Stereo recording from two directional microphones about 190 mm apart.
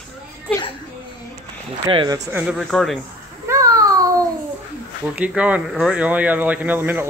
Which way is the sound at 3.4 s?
15° right (ahead or behind).